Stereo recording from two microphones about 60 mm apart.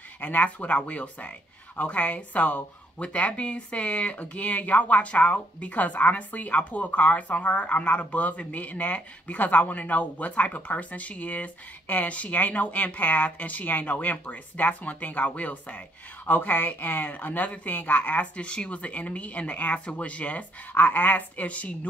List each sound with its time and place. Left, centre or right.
0.2 s speech: left